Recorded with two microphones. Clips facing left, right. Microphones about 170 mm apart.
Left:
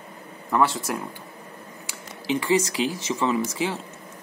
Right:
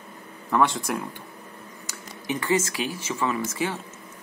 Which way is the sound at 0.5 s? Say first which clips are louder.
Even; 5° left (ahead or behind).